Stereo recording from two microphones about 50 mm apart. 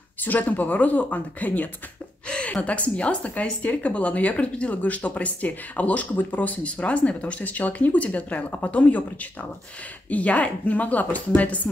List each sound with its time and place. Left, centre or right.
0.2 s speech: left
2.2 s a woman's voice: left